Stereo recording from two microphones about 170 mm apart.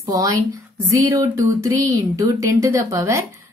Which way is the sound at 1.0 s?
20° right (ahead or behind).